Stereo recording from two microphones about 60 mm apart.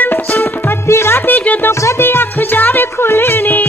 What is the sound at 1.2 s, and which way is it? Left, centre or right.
Music, left.